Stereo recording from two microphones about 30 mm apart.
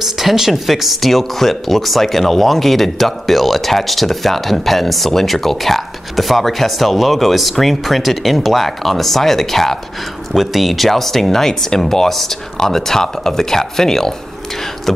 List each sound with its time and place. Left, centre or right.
0.0 s speech: centre
10.3 s speech: centre